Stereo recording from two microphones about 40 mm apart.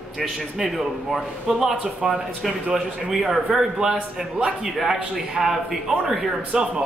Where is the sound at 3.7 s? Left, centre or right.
Right.